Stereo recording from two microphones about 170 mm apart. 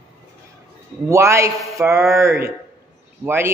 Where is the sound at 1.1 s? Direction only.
15° right (ahead or behind).